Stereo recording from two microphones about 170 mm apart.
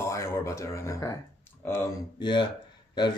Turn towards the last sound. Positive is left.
turn(degrees=25)  # may be behind; listen again after turning